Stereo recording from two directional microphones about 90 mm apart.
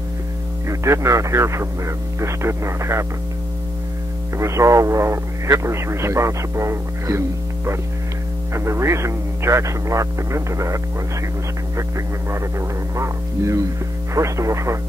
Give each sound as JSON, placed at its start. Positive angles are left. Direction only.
{"t": 0.7, "sound": "speech", "side_deg": -35}
{"t": 4.4, "sound": "speech", "side_deg": -35}
{"t": 12.3, "sound": "speech", "side_deg": -30}